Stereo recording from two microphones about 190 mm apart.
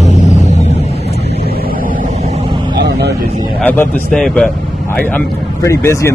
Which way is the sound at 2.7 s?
65° right (ahead or behind).